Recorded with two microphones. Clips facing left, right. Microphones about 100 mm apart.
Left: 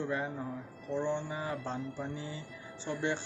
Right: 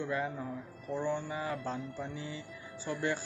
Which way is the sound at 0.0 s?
30° left (ahead or behind).